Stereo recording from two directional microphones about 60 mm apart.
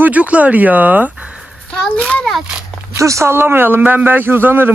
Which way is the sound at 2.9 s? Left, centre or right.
Right.